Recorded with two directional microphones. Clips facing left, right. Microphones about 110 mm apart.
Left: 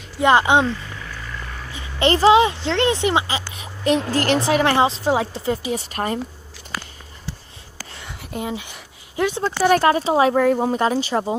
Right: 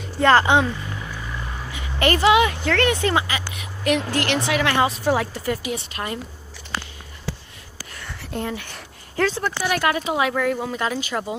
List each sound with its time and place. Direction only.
0.2 s speech: 15° left (ahead or behind)
0.9 s vehicle: 15° right (ahead or behind)
1.7 s a woman's voice: 25° left (ahead or behind)
5.8 s speech: 40° left (ahead or behind)
6.7 s a sound: 30° right (ahead or behind)
7.9 s a sound: 20° left (ahead or behind)
8.5 s speech: 15° left (ahead or behind)
9.6 s speech: 35° left (ahead or behind)